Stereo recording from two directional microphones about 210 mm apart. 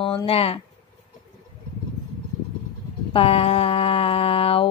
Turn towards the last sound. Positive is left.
turn(degrees=25)  # may be behind; listen again after turning